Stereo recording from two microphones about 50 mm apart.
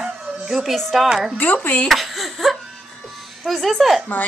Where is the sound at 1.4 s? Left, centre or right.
Left.